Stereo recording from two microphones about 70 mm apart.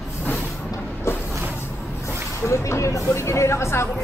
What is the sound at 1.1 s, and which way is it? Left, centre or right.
Vehicle, left.